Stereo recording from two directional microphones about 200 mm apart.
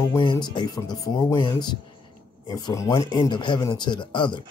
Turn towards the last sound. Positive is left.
turn(degrees=25)  # may be behind; listen again after turning